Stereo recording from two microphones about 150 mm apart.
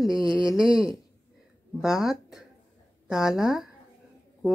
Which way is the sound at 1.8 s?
5° right (ahead or behind).